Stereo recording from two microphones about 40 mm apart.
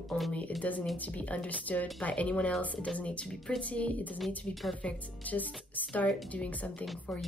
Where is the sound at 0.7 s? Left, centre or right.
Left.